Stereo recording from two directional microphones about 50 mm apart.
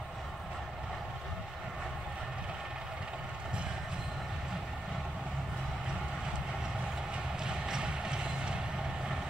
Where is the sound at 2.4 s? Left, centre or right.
Centre.